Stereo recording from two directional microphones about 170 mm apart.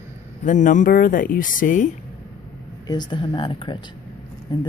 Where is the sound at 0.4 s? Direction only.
50° left (ahead or behind).